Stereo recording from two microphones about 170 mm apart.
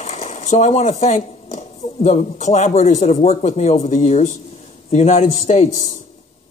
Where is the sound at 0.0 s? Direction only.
45° left (ahead or behind).